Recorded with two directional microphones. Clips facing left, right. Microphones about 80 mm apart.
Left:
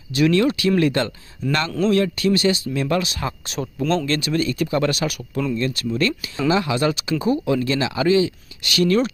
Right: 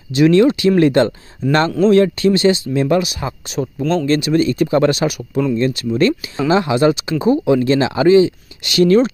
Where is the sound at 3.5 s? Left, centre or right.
Centre.